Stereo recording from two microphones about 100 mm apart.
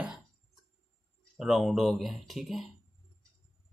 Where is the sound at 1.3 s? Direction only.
Centre (ahead or behind).